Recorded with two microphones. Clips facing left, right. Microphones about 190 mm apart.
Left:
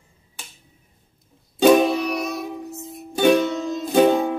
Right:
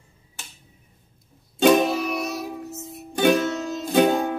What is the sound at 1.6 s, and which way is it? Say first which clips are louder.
Music: left 3 dB; centre (ahead or behind).